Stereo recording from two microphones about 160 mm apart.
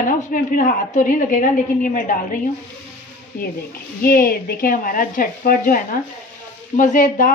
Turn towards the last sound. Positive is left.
turn(degrees=55)  # may be behind; listen again after turning